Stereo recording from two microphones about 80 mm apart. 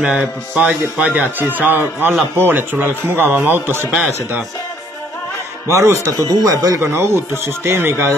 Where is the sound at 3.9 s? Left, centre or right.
Centre.